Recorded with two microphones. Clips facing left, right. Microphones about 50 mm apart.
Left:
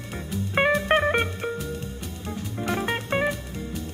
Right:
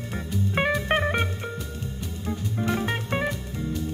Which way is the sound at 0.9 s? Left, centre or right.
Centre.